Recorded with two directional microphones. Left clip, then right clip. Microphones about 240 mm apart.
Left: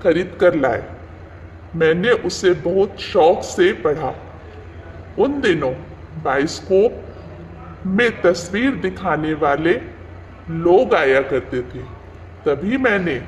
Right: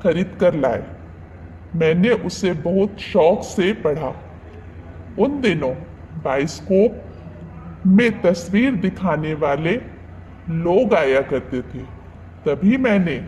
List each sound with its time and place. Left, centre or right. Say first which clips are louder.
0.0 s a man's voice: left 2 dB; right
1.8 s a man's voice: left 2 dB; right
5.1 s a man's voice: left 2 dB; centre
7.9 s a man's voice: left 1 dB; right